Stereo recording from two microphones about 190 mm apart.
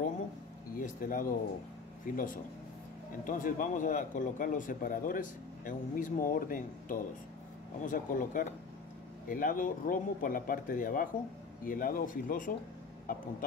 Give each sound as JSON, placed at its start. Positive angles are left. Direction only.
{"t": 0.7, "sound": "speech", "side_deg": 45}
{"t": 3.3, "sound": "speech", "side_deg": 45}